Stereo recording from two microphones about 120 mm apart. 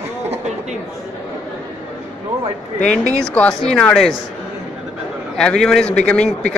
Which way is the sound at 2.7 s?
80° left.